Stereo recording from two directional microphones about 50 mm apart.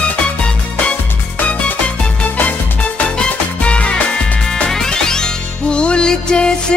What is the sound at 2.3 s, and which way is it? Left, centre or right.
Music, left.